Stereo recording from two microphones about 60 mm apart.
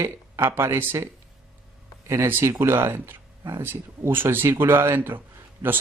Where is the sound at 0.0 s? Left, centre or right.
Right.